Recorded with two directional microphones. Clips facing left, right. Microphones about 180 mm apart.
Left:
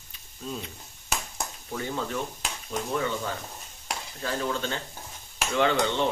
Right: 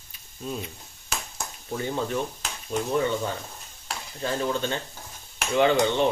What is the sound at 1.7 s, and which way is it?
Speech, 20° right (ahead or behind).